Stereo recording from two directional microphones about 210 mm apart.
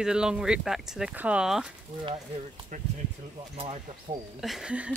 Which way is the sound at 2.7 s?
35° right (ahead or behind).